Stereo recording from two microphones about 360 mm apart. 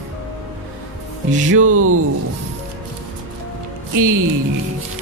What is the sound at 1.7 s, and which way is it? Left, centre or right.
Speech, right.